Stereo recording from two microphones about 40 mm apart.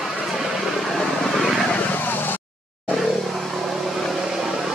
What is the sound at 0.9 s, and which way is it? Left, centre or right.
Vehicle, centre.